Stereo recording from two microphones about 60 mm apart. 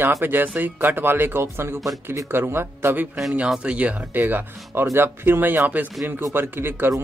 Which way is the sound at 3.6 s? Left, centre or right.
Right.